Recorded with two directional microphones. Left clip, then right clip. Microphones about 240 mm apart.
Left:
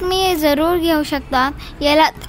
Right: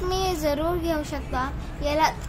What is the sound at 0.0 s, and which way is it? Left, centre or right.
A woman's voice, left.